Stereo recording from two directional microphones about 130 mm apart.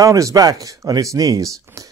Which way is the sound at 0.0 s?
25° right (ahead or behind).